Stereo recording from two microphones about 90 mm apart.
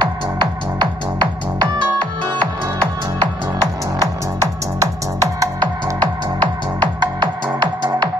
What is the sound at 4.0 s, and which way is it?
Music, 35° right (ahead or behind).